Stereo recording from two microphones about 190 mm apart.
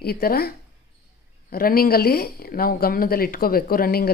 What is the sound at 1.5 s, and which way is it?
A woman's voice, 50° left (ahead or behind).